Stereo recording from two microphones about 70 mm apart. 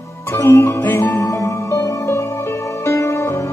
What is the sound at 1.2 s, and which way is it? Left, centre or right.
Music, left.